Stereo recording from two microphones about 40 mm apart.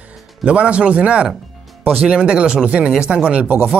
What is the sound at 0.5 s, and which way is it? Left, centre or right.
Speech, right.